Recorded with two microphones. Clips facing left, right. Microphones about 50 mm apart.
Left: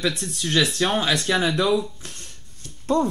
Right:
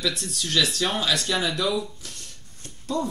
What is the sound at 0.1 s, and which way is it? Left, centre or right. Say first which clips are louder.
Speech: left 2 dB; right.